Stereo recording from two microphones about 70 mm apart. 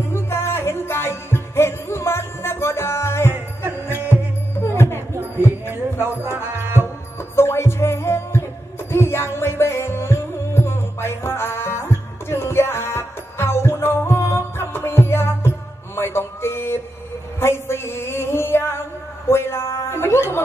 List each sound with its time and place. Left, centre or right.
0.1 s music: left
6.3 s music: right
7.3 s music: left
16.0 s a sound: left
17.4 s music: left
19.2 s a sound: left